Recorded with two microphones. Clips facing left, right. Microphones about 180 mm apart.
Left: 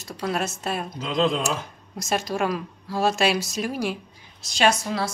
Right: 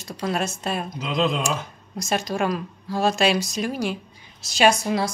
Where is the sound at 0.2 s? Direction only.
Centre (ahead or behind).